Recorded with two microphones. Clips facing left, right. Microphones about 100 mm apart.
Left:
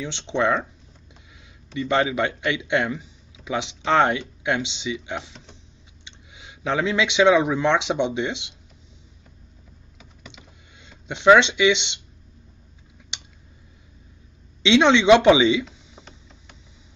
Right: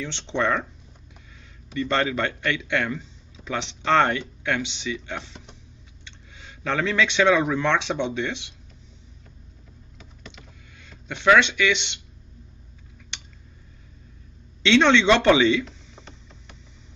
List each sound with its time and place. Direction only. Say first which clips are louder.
0.0 s a man's voice: left 2 dB; 15° left (ahead or behind)
1.7 s a man's voice: left 2 dB; 15° left (ahead or behind)
9.9 s power windows: right 1 dB; 10° left (ahead or behind)
10.8 s speech: left 3 dB; 20° left (ahead or behind)
13.1 s a sound: left 1 dB; 20° left (ahead or behind)
14.6 s a sound: left 1 dB; 15° left (ahead or behind)